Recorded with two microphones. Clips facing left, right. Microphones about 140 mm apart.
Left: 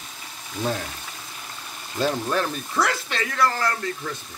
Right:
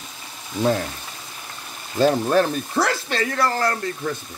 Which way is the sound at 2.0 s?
40° right (ahead or behind).